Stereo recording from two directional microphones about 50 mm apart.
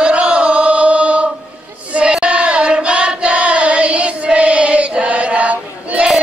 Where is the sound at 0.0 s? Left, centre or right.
Right.